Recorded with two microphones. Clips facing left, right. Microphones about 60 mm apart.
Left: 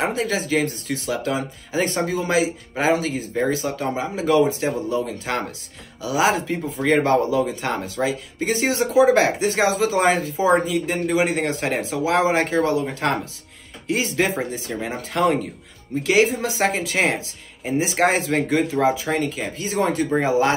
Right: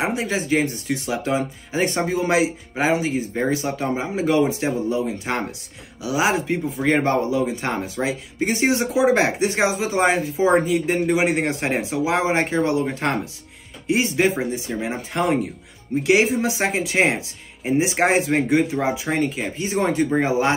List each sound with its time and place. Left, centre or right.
0.0 s speech: centre